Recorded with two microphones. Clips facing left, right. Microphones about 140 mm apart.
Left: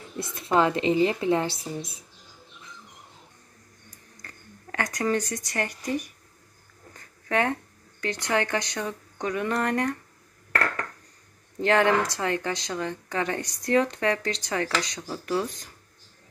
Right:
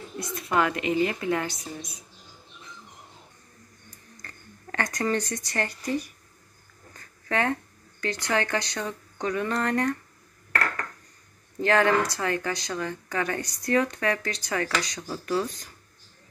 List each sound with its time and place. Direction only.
0.2 s a woman's voice: 25° left (ahead or behind)
4.2 s speech: 10° left (ahead or behind)
7.0 s a sound: 20° left (ahead or behind)
8.0 s speech: 20° left (ahead or behind)
11.6 s a woman's voice: 20° left (ahead or behind)